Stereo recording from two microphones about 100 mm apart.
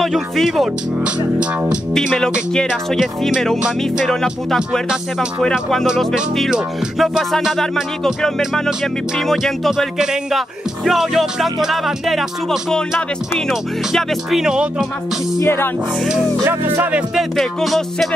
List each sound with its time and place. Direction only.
0.0 s speech: centre (ahead or behind)
2.9 s speech: 5° right (ahead or behind)
15.3 s music: 25° left (ahead or behind)
16.4 s speech: 20° right (ahead or behind)
17.1 s speech: centre (ahead or behind)